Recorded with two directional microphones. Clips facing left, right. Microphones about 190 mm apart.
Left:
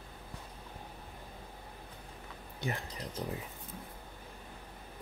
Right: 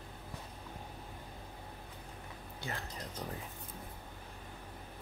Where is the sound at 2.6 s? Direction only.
15° left (ahead or behind).